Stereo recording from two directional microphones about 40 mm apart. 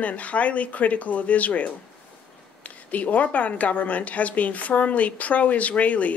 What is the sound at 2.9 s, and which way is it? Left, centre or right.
Speech, left.